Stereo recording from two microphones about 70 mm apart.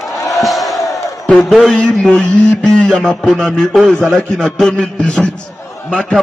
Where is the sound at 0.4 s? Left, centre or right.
Centre.